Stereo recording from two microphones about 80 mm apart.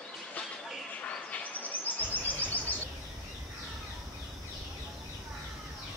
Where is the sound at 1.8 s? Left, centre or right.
Left.